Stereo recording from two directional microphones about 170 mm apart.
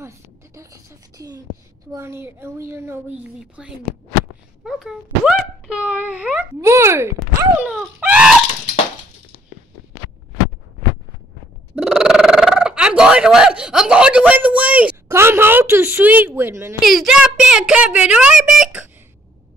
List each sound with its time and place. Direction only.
0.6 s a sound: 20° right (ahead or behind)
1.9 s a child's voice: 15° right (ahead or behind)
7.2 s groan: 5° right (ahead or behind)
11.7 s speech: 5° right (ahead or behind)
16.8 s a woman's voice: centre (ahead or behind)